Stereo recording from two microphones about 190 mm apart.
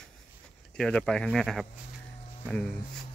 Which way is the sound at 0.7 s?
5° left (ahead or behind).